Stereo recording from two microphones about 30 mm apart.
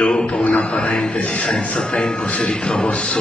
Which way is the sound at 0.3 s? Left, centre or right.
Left.